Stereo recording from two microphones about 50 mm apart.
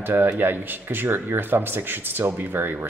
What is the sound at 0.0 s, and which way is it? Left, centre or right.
A man's voice, right.